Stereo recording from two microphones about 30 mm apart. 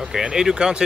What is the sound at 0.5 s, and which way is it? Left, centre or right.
Speech, right.